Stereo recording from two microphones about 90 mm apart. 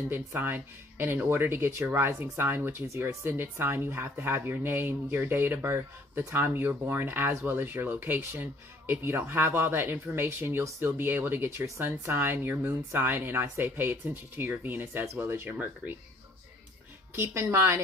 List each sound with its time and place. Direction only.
0.1 s speech: 20° right (ahead or behind)
17.1 s speech: 30° right (ahead or behind)